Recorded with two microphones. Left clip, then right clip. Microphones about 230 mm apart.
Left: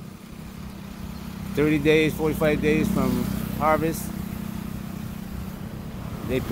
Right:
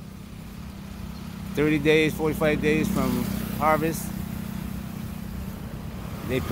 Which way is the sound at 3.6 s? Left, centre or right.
Centre.